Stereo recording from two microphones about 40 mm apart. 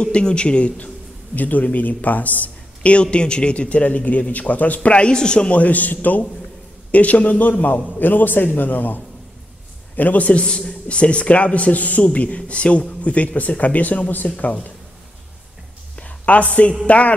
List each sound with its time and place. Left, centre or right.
0.0 s a man's voice: left
1.3 s a man's voice: left
5.1 s a man's voice: left
5.5 s a man's voice: left
7.6 s a man's voice: left
10.3 s a man's voice: left
16.0 s a sound: left
16.8 s a man's voice: left